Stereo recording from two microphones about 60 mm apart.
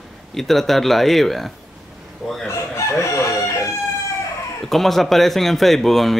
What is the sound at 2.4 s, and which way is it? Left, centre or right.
Chicken, left.